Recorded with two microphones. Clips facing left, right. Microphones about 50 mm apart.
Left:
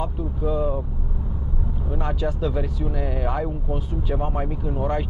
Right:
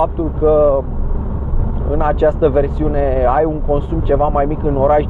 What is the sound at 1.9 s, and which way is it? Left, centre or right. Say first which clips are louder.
Speech: right 14 dB; right.